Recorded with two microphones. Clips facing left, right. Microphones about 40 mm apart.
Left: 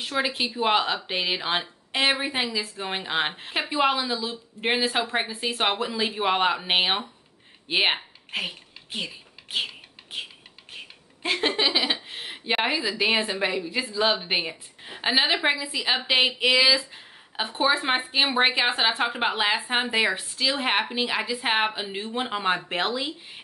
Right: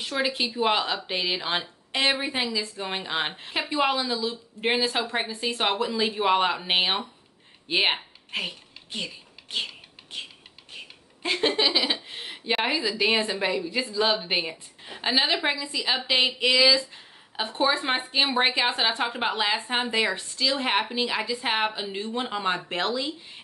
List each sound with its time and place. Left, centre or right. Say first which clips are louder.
0.0 s speech: even; centre
8.3 s a sound: left 1 dB; centre
11.2 s speech: even; centre